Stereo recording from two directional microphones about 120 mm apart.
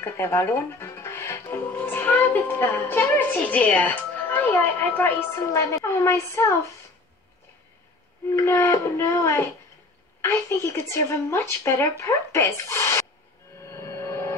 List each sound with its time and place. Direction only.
0.0 s speech: 20° left (ahead or behind)
8.3 s a woman's voice: 25° left (ahead or behind)
13.7 s music: 25° left (ahead or behind)